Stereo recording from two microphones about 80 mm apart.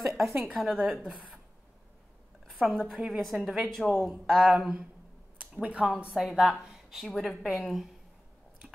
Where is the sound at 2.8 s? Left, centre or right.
Centre.